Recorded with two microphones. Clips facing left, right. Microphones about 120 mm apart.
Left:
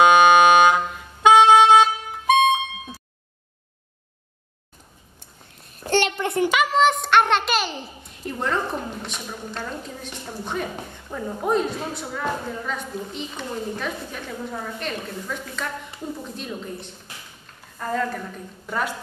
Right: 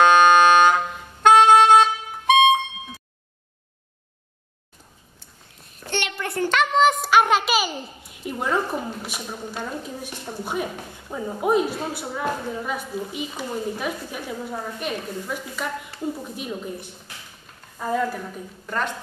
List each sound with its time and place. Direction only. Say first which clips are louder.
0.0 s music: left 1 dB; 10° left (ahead or behind)
5.9 s a sound: left 7 dB; 35° left (ahead or behind)
6.1 s a child's voice: left 3 dB; 20° left (ahead or behind)
6.5 s a child's voice: right 2 dB; 5° left (ahead or behind)
18.7 s a woman's voice: even; 5° left (ahead or behind)